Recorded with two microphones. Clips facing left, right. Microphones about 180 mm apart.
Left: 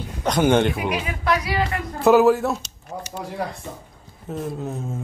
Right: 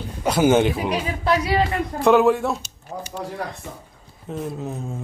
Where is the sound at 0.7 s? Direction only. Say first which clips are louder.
Right 1 dB; 30° right (ahead or behind).